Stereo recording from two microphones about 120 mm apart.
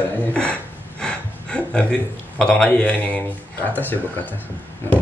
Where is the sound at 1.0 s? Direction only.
10° left (ahead or behind).